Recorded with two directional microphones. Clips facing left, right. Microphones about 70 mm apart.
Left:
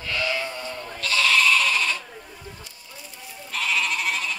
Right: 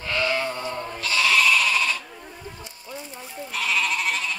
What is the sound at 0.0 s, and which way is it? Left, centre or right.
Sheep, right.